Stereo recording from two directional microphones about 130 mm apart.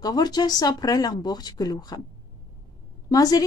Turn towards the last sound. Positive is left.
turn(degrees=30)  # may be behind; listen again after turning